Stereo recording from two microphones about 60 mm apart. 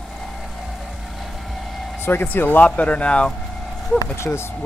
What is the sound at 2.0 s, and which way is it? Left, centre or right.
Speech, left.